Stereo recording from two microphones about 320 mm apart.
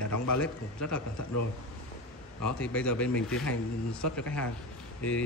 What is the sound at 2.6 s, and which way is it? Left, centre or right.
A man's voice, centre.